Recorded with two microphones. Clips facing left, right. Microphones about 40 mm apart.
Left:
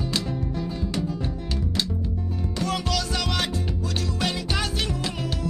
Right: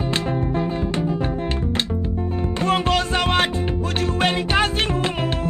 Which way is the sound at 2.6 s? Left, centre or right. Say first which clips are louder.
Right 7 dB; right.